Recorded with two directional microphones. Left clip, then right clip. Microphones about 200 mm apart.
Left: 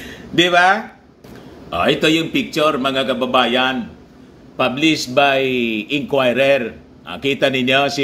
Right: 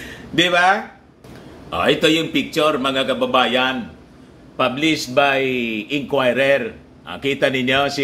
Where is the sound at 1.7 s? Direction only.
5° right (ahead or behind).